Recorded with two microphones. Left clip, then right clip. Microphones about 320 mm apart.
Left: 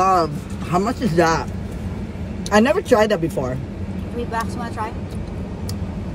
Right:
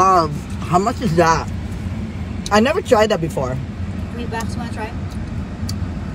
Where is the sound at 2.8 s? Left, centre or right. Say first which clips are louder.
Right 1 dB; centre.